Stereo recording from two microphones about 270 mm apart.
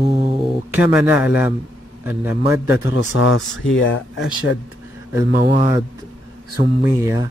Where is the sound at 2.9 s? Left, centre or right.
Left.